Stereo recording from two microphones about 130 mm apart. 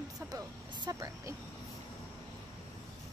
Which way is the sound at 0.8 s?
30° right (ahead or behind).